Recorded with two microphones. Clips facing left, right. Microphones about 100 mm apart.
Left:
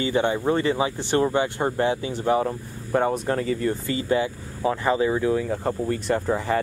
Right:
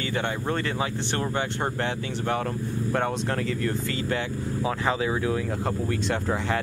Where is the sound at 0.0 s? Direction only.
15° left (ahead or behind).